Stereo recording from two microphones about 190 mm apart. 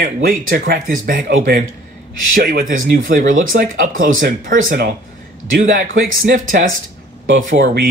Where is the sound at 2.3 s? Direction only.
50° right (ahead or behind).